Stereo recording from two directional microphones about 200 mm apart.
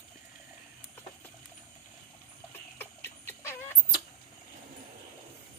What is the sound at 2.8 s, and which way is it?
Chicken, 10° left (ahead or behind).